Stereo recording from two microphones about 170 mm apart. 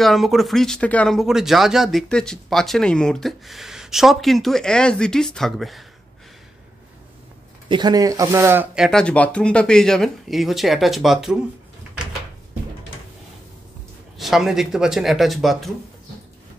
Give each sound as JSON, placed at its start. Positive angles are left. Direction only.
{"t": 0.0, "sound": "speech", "side_deg": 0}
{"t": 7.6, "sound": "speech", "side_deg": -25}
{"t": 8.8, "sound": "speech", "side_deg": 5}
{"t": 14.1, "sound": "speech", "side_deg": 0}